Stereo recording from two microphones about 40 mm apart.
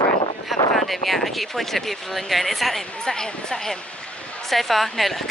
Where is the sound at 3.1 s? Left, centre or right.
Centre.